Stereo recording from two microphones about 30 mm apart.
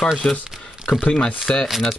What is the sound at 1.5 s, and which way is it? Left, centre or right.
Speech, left.